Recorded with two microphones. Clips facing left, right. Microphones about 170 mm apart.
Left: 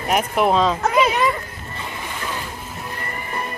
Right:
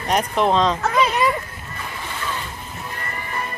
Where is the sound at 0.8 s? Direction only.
10° left (ahead or behind).